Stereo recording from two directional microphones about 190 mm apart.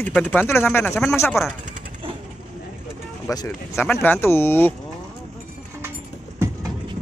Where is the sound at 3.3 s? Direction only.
20° left (ahead or behind).